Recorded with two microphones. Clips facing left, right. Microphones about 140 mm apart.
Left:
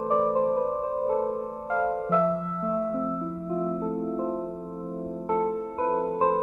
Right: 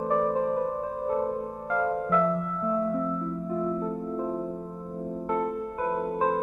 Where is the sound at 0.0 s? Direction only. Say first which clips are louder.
Left 2 dB; 20° left (ahead or behind).